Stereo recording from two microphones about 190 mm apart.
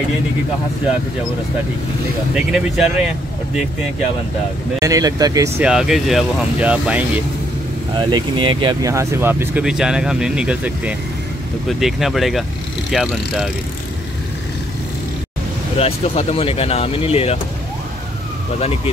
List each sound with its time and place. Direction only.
2.3 s speech: 5° right (ahead or behind)
4.7 s speech: 15° right (ahead or behind)
5.6 s speech: 5° right (ahead or behind)
8.0 s speech: 25° right (ahead or behind); by 13.5 s centre (ahead or behind)
15.8 s speech: 30° left (ahead or behind)